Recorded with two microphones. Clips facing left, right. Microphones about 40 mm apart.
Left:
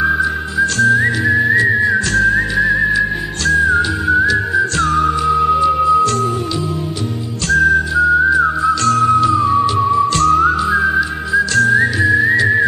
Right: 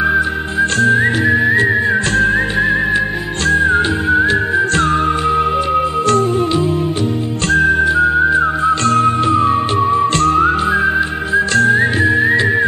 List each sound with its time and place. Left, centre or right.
0.6 s whistling: right
4.3 s music: right
7.4 s whistling: right